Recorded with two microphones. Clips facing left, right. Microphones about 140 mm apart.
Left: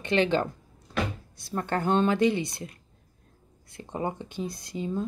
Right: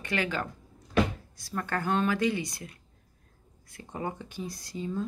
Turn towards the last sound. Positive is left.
turn(degrees=20)  # may be behind; listen again after turning